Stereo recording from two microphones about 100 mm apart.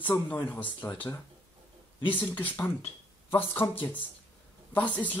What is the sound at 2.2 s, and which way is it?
Speech, 20° left (ahead or behind).